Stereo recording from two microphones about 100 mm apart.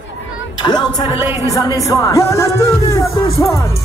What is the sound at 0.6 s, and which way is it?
Speech, 45° left (ahead or behind).